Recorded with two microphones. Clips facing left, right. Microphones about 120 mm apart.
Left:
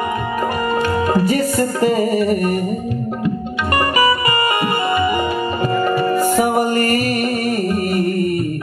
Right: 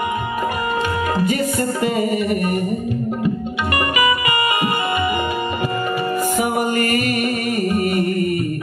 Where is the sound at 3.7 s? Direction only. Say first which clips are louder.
Left 3 dB; 35° left (ahead or behind).